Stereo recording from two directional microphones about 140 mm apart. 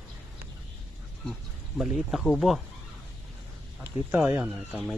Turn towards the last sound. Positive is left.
turn(degrees=0)  # may be behind; listen again after turning